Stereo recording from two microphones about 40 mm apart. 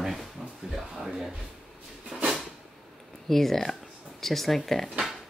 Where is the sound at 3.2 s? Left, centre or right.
Centre.